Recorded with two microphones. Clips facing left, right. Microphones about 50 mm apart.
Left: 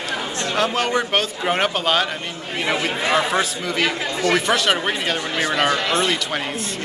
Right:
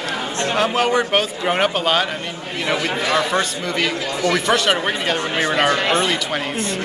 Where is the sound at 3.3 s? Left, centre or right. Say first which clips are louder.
Right 1 dB; centre.